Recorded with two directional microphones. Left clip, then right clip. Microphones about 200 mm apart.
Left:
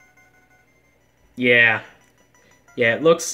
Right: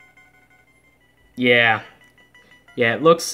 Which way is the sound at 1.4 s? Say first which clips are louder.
Even; 10° right (ahead or behind).